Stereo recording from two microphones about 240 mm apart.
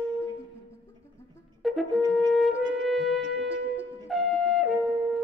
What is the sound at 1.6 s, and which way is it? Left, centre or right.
Brass instrument, centre.